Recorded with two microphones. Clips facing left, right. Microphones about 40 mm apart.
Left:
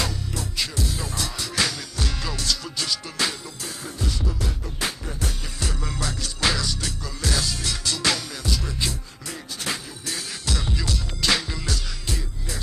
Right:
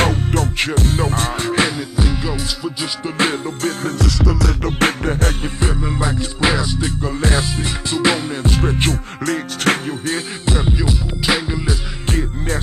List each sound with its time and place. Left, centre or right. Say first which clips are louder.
0.0 s music: right 12 dB; right; by 2.9 s centre
3.2 s music: right 11 dB; right
4.0 s music: right 10 dB; right
4.7 s music: right 13 dB; right
5.4 s music: right 10 dB; right
10.0 s music: right 7 dB; right
12.1 s music: right 13 dB; right